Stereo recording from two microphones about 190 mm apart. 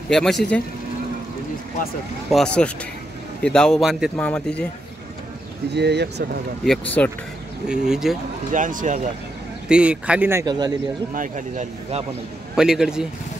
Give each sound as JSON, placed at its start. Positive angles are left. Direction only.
{"t": 0.1, "sound": "speech", "side_deg": 0}
{"t": 2.2, "sound": "speech", "side_deg": 5}
{"t": 5.8, "sound": "speech", "side_deg": -60}
{"t": 7.0, "sound": "speech", "side_deg": 10}
{"t": 7.6, "sound": "speech", "side_deg": -5}
{"t": 8.5, "sound": "speech", "side_deg": -45}
{"t": 9.7, "sound": "a man's voice", "side_deg": -5}
{"t": 10.4, "sound": "speech", "side_deg": -20}
{"t": 11.1, "sound": "speech", "side_deg": -40}
{"t": 12.5, "sound": "speech", "side_deg": -5}